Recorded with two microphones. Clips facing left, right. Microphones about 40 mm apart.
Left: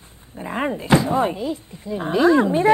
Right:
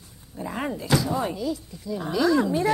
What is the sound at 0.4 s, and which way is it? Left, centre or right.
Speech, left.